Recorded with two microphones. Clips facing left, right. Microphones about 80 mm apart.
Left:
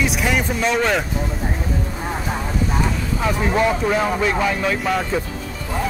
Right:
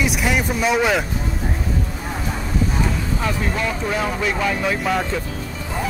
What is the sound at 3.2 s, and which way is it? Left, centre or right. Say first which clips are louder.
Speech: left 7 dB; centre.